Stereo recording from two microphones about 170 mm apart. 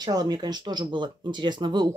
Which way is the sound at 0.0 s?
25° right (ahead or behind).